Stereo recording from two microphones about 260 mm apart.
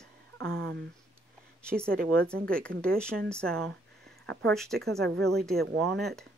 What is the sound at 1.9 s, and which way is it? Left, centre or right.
Speech, right.